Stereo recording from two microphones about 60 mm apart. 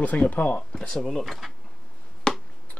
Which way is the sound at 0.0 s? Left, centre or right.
Left.